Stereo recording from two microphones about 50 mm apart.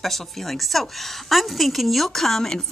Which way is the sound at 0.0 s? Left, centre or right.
Centre.